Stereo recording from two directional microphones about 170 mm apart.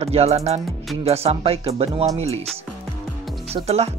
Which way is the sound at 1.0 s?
35° right (ahead or behind).